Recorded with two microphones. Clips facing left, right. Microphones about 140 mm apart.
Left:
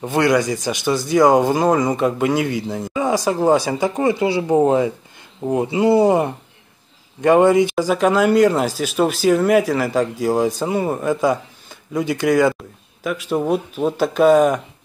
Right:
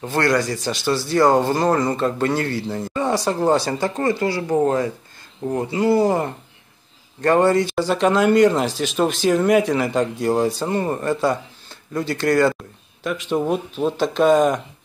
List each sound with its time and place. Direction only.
0.0 s speech: 15° left (ahead or behind)